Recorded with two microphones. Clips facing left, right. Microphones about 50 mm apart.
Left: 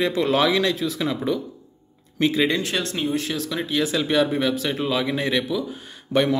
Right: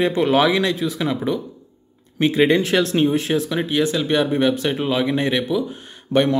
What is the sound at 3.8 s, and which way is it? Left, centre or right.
Speech, centre.